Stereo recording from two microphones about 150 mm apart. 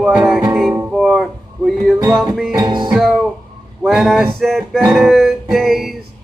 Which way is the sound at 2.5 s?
30° right (ahead or behind).